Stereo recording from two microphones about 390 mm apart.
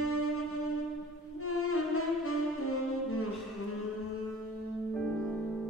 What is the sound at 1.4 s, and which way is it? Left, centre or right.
Saxophone, left.